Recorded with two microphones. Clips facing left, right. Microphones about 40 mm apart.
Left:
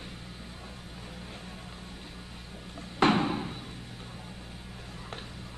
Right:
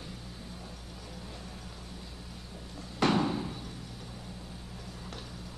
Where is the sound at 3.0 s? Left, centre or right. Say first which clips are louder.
Left 3 dB; left.